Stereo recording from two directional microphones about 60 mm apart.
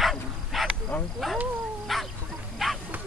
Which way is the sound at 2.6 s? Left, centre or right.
Centre.